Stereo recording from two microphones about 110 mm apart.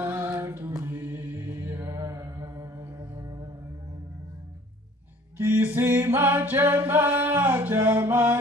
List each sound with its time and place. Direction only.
0.0 s music: 25° right (ahead or behind)
5.4 s a capella: 20° right (ahead or behind)